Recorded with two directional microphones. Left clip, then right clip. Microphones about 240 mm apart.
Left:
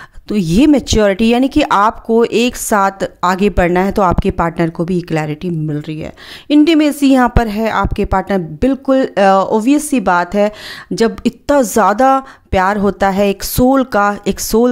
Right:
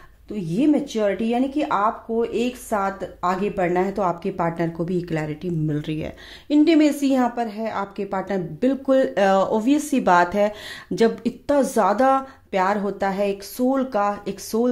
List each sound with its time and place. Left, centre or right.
0.3 s speech: left; by 6.0 s centre
6.5 s a woman's voice: left